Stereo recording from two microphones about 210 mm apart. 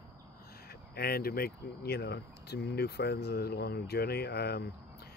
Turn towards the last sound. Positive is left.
turn(degrees=50)  # may be behind; listen again after turning